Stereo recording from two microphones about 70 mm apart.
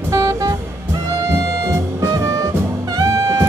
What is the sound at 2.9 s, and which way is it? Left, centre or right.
Music, right.